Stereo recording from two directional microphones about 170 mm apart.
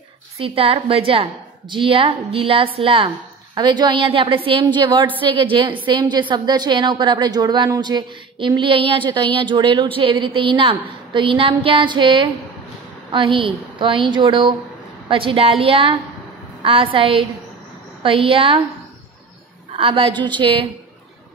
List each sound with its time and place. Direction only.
0.4 s a woman's voice: 35° right (ahead or behind)
19.7 s a woman's voice: 35° right (ahead or behind)